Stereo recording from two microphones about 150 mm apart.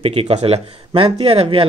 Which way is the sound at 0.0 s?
40° right (ahead or behind).